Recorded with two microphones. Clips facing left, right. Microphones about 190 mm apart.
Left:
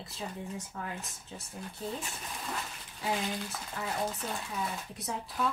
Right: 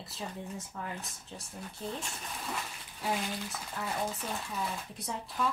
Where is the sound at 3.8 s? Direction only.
Centre (ahead or behind).